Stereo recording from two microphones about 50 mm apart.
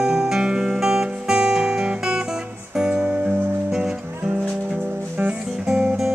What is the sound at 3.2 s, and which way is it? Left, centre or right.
Music, right.